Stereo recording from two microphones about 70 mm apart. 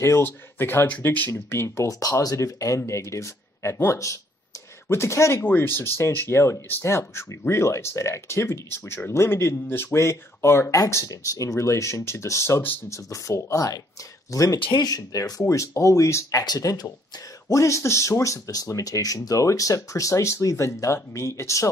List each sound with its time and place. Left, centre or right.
0.2 s speech: left
1.9 s speech: left
15.4 s speech: left
16.4 s speech: left
17.5 s speech: left